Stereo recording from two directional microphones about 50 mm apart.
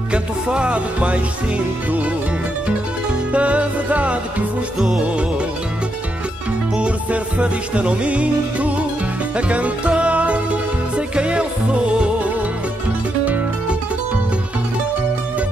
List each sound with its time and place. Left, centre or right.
0.1 s music: right
3.3 s music: right
4.7 s music: centre
6.7 s music: right